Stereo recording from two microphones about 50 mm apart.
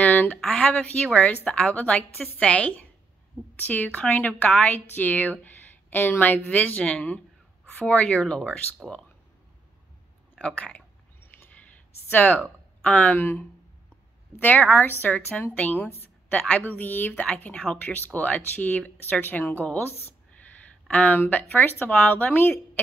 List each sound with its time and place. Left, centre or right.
0.0 s a sound: left
0.5 s a woman's voice: left
6.8 s a woman's voice: centre
10.4 s a sound: centre
12.1 s a woman's voice: left
12.8 s speech: left
13.1 s speech: left
14.4 s a woman's voice: left
15.8 s a woman's voice: left
19.2 s a woman's voice: left
19.9 s speech: left
20.9 s a woman's voice: left